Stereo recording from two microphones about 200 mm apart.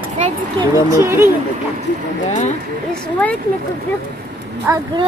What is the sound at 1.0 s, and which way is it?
Speech, 15° right (ahead or behind).